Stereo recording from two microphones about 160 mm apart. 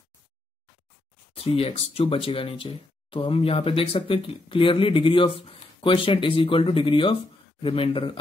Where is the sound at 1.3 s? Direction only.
35° left (ahead or behind).